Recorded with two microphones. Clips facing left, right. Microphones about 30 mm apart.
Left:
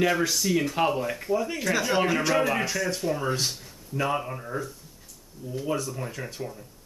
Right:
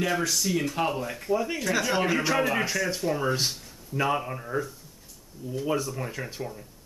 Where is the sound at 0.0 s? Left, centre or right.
Centre.